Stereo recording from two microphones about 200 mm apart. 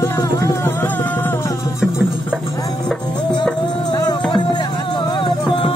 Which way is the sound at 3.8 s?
20° left (ahead or behind).